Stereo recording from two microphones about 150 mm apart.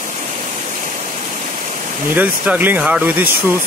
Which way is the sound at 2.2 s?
10° right (ahead or behind).